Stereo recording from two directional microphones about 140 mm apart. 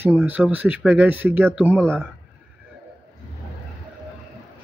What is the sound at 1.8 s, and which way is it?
Speech, 5° left (ahead or behind).